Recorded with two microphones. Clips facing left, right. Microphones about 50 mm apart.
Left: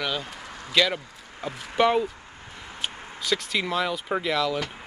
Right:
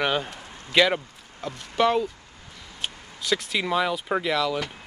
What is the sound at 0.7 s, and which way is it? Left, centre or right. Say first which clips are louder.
Speech: right 3 dB; centre.